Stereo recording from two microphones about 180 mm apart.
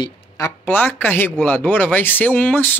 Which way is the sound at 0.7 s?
10° left (ahead or behind).